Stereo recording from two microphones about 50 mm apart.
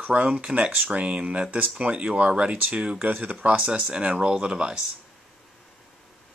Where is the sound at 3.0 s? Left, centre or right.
Right; by 4.8 s centre.